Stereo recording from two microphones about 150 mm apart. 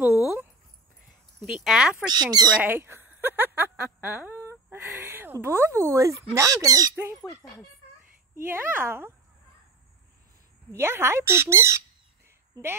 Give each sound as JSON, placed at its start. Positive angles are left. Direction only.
{"t": 1.4, "sound": "speech", "side_deg": -5}
{"t": 2.0, "sound": "speech", "side_deg": -25}
{"t": 2.6, "sound": "speech", "side_deg": -15}
{"t": 8.5, "sound": "speech", "side_deg": -15}
{"t": 10.7, "sound": "a woman's voice", "side_deg": -15}